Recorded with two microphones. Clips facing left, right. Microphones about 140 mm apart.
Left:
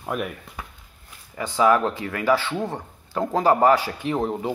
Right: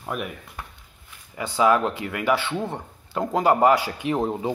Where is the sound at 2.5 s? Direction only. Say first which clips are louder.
Left 1 dB; centre (ahead or behind).